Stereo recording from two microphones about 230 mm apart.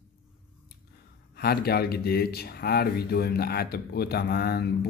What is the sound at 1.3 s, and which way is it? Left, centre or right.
Speech, left.